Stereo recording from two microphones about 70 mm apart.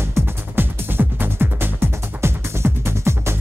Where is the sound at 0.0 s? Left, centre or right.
Right.